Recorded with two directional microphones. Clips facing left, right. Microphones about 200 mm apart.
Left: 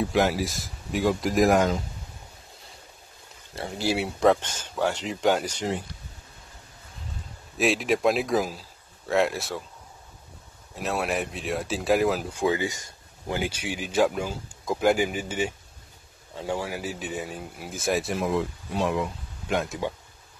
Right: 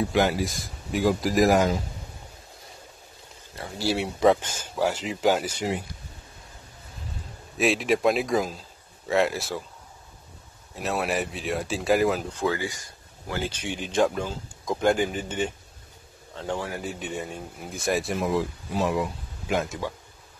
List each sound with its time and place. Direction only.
0.0 s speech: centre (ahead or behind)
3.5 s speech: 20° left (ahead or behind)
3.9 s speech: centre (ahead or behind)
7.5 s speech: centre (ahead or behind)
10.7 s speech: centre (ahead or behind)